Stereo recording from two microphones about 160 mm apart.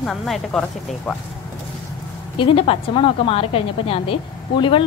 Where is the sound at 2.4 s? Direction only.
35° left (ahead or behind).